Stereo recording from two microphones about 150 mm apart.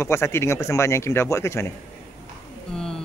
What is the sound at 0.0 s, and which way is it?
Speech, 15° left (ahead or behind).